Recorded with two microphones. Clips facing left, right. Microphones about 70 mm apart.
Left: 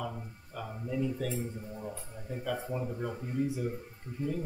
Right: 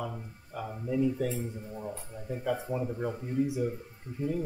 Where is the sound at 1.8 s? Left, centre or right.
Centre.